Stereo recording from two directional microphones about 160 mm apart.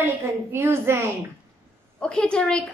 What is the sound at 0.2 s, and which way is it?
Speech, 15° right (ahead or behind).